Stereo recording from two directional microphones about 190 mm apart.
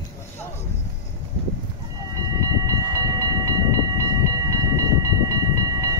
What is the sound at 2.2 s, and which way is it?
Train, 15° right (ahead or behind).